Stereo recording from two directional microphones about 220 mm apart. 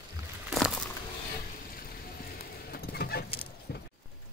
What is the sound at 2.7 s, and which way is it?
Fowl, 45° left (ahead or behind).